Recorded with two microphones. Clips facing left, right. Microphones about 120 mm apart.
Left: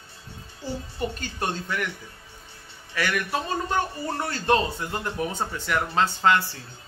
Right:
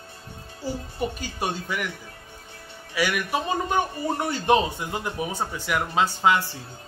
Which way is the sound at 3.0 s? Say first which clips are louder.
Right 2 dB; 10° right (ahead or behind).